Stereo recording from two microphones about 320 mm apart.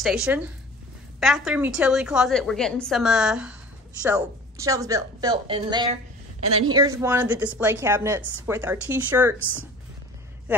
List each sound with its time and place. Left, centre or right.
0.0 s a woman's voice: centre
8.2 s speech: right
8.5 s a woman's voice: centre